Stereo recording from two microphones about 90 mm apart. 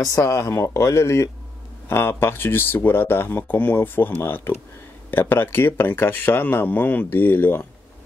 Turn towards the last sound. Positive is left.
turn(degrees=25)  # may be behind; listen again after turning